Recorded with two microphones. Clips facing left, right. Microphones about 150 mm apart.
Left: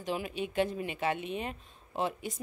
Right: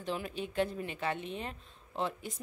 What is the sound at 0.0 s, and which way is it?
A woman's voice, 15° left (ahead or behind).